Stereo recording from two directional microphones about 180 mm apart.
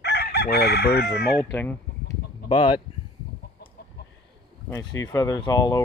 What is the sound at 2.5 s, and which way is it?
Speech, 25° left (ahead or behind).